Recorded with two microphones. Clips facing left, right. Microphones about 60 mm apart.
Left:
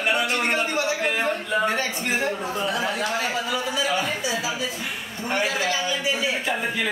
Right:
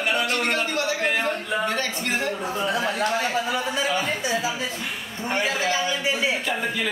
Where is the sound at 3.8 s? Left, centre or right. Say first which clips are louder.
Left 1 dB; centre.